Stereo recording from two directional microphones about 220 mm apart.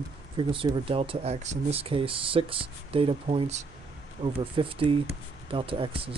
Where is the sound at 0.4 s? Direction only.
20° right (ahead or behind).